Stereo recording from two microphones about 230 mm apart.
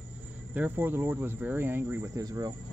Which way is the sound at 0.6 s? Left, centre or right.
Centre.